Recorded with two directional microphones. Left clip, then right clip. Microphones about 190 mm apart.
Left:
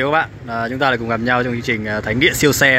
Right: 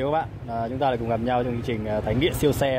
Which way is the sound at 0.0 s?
5° left (ahead or behind).